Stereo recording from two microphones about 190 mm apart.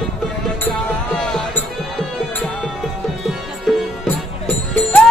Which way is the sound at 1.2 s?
5° left (ahead or behind).